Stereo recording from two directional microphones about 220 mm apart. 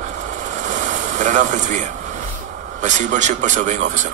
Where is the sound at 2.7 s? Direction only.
35° right (ahead or behind).